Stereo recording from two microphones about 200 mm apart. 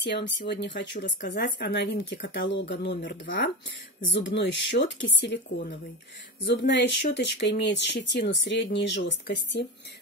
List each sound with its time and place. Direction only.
0.0 s speech: 60° left (ahead or behind)
6.4 s speech: 60° left (ahead or behind)